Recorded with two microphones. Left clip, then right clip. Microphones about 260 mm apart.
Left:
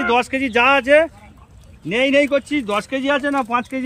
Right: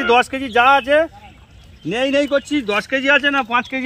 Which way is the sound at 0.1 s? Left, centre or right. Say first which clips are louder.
Right 4 dB; centre.